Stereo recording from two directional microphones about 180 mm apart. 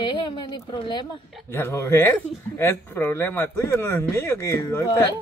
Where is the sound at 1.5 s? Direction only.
15° left (ahead or behind).